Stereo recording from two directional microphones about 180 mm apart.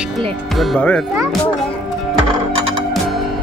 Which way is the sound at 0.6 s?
5° left (ahead or behind).